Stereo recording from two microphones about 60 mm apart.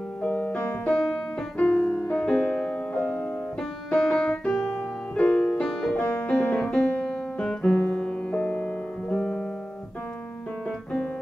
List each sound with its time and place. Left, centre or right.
0.2 s music: left
5.9 s music: left